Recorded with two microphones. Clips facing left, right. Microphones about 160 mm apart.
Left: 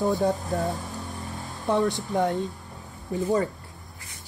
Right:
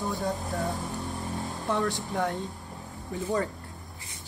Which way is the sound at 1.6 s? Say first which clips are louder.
Left 6 dB; 20° left (ahead or behind).